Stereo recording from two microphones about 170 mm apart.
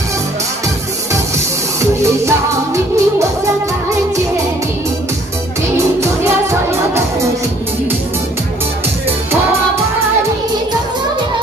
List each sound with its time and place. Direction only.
1.8 s music: 15° right (ahead or behind)